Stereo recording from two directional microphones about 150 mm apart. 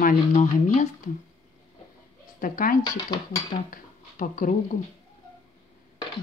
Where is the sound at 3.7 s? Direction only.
65° left (ahead or behind).